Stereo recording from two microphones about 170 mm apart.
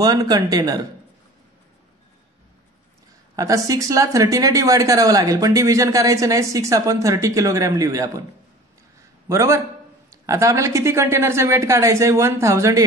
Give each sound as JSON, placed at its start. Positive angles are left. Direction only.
{"t": 0.0, "sound": "a woman's voice", "side_deg": -20}
{"t": 3.3, "sound": "a woman's voice", "side_deg": -20}
{"t": 9.3, "sound": "a woman's voice", "side_deg": -15}